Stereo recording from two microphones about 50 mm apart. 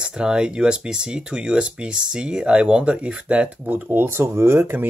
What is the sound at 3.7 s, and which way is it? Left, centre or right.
Speech, right.